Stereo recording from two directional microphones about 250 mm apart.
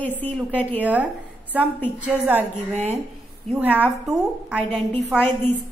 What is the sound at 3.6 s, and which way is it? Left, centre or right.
A woman's voice, centre.